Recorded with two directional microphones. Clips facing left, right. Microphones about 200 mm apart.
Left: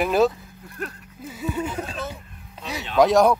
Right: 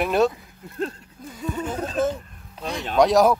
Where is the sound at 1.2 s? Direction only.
5° left (ahead or behind).